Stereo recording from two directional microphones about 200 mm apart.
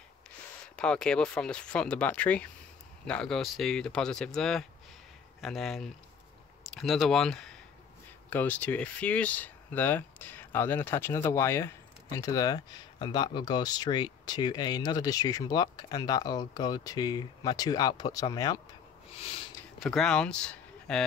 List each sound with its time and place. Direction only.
0.7 s speech: 5° left (ahead or behind)
19.8 s speech: centre (ahead or behind)